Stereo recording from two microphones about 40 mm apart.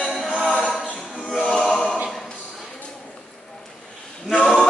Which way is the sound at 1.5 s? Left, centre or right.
Centre.